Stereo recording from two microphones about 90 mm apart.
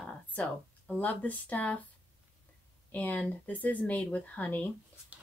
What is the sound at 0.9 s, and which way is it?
Speech, 15° left (ahead or behind).